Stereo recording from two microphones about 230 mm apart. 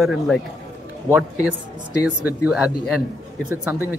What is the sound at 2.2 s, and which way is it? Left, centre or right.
A man's voice, centre.